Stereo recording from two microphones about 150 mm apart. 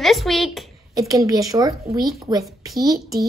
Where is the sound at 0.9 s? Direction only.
20° right (ahead or behind).